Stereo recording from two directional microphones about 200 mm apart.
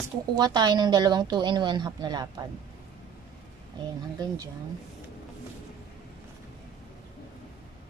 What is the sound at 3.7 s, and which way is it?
Speech, 25° right (ahead or behind).